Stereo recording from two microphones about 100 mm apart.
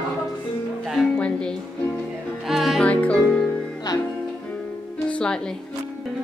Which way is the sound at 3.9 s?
40° left (ahead or behind).